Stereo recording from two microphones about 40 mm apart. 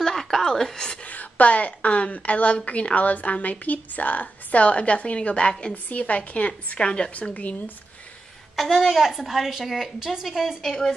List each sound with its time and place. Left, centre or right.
0.0 s a sound: centre
1.0 s a woman's voice: left
5.9 s a woman's voice: left
7.2 s a woman's voice: left
8.5 s a woman's voice: centre
10.6 s a woman's voice: centre